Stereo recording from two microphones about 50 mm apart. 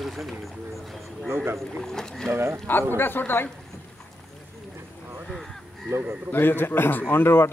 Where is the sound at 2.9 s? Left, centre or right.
Left.